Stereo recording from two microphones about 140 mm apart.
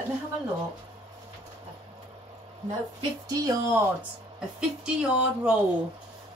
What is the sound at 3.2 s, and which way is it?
Speech, 25° right (ahead or behind).